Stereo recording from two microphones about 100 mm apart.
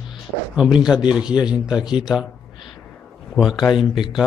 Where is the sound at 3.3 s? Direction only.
5° right (ahead or behind).